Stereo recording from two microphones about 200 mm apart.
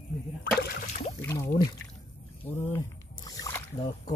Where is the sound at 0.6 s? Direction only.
45° left (ahead or behind).